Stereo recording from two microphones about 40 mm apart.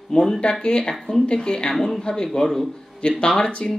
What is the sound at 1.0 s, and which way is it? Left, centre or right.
Speech, centre.